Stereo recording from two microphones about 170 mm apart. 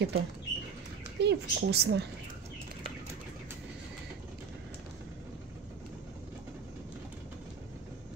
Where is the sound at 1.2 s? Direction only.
80° right.